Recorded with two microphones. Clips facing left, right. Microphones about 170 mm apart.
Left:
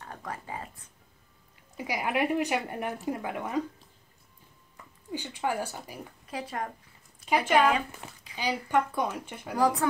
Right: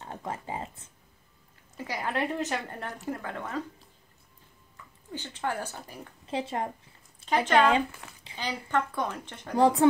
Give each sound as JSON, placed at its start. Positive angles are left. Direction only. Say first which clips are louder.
{"t": 0.0, "sound": "a sound", "louder": "right 3 dB", "side_deg": -25}
{"t": 1.8, "sound": "speech", "louder": "left 2 dB", "side_deg": 15}
{"t": 5.1, "sound": "speech", "louder": "left 2 dB", "side_deg": 10}
{"t": 6.2, "sound": "speech", "louder": "right 4 dB", "side_deg": -25}
{"t": 7.2, "sound": "speech", "louder": "even", "side_deg": 10}
{"t": 8.0, "sound": "a woman's voice", "louder": "left 4 dB", "side_deg": 20}
{"t": 9.6, "sound": "speech", "louder": "right 4 dB", "side_deg": -25}